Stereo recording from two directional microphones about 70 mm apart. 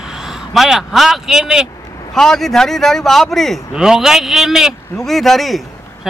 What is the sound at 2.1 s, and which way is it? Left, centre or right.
A man's voice, centre.